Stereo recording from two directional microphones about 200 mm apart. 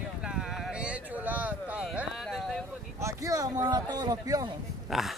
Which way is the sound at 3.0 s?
15° right (ahead or behind).